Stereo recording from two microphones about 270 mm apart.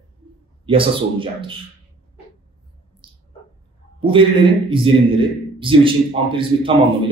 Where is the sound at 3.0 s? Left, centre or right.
Centre.